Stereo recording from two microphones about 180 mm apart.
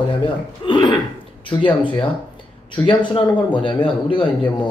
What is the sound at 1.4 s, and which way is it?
Speech, 30° left (ahead or behind).